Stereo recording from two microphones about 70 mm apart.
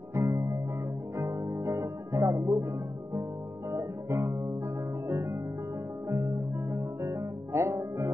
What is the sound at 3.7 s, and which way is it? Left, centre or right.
Music, right.